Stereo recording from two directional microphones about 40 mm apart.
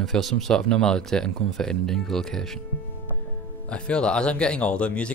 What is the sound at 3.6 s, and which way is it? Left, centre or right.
Speech, left.